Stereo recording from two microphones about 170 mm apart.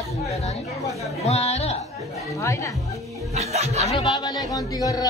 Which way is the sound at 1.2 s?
40° left (ahead or behind).